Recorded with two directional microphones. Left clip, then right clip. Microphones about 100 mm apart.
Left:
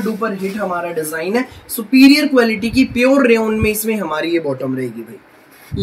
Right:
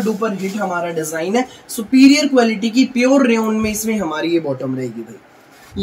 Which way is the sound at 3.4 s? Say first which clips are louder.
Left 3 dB; 20° right (ahead or behind).